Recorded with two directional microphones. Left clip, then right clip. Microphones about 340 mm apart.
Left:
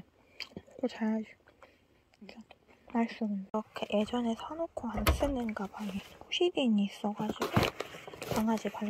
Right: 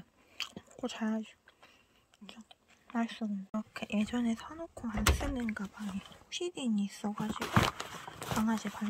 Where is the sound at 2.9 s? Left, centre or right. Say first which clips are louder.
Left 3 dB; centre.